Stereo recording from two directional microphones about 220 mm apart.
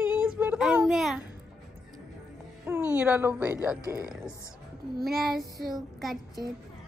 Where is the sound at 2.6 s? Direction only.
10° right (ahead or behind).